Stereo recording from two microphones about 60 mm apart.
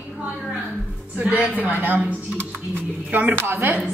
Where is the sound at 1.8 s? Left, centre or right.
Right.